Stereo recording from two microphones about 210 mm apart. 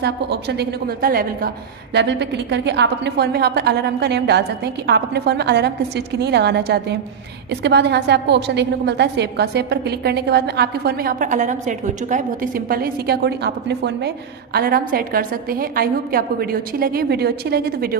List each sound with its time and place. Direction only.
0.0 s a woman's voice: 50° right (ahead or behind)